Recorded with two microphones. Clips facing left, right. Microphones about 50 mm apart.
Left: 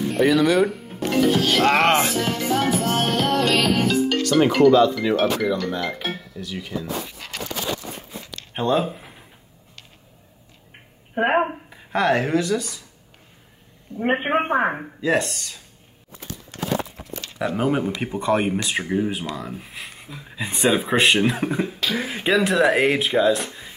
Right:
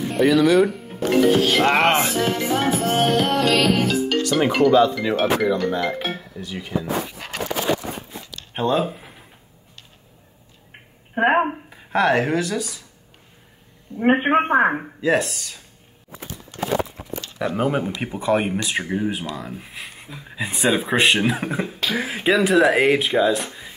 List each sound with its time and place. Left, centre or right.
0.0 s music: centre
1.1 s speech: centre
2.1 s music: right
3.0 s speech: centre
5.4 s music: right
6.1 s speech: right
7.3 s a sound: right
8.5 s speech: centre
11.2 s speech: centre
14.0 s speech: centre
17.4 s speech: centre